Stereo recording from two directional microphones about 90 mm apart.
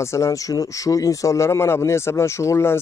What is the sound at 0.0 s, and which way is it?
Speech, 35° left (ahead or behind).